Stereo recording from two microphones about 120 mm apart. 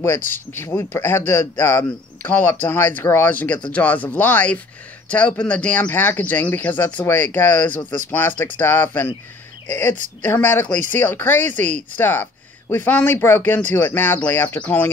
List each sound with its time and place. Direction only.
0.5 s speech: 20° left (ahead or behind)
10.2 s speech: 15° left (ahead or behind)